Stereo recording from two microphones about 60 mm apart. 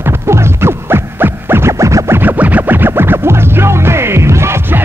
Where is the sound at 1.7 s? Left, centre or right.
Right.